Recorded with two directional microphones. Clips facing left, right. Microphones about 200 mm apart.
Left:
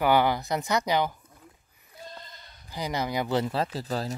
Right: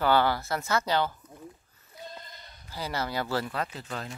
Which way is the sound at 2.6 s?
15° left (ahead or behind).